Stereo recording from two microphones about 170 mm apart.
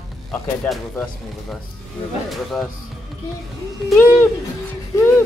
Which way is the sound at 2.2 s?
Centre (ahead or behind).